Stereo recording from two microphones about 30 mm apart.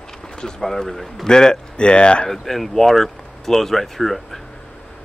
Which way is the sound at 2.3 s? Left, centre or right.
Centre.